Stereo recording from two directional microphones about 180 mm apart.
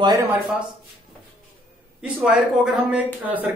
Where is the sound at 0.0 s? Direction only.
20° right (ahead or behind).